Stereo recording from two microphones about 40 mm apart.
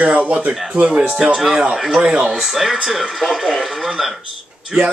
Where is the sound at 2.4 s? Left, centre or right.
Centre.